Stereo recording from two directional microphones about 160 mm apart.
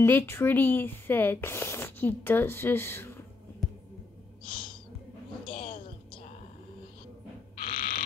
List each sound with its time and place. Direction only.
0.0 s speech: 15° left (ahead or behind)
5.5 s a sound: 35° left (ahead or behind)
7.6 s owl: 65° left (ahead or behind)